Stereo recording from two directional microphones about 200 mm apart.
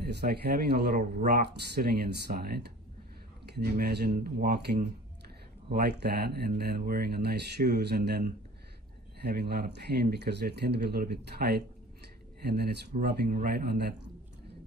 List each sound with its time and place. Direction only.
0.0 s speech: 55° right (ahead or behind)
0.9 s speech: 40° right (ahead or behind)
1.5 s speech: 50° right (ahead or behind)
9.2 s speech: 55° right (ahead or behind)